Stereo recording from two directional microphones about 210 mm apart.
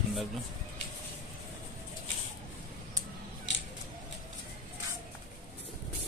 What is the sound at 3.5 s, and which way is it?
Scissors, 60° left (ahead or behind).